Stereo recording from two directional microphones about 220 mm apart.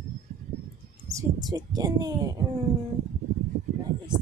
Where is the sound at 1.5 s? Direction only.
15° right (ahead or behind).